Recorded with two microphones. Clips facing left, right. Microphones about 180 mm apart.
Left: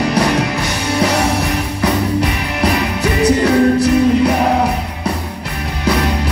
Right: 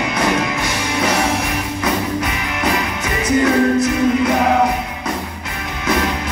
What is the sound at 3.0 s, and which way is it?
Music, 35° left (ahead or behind).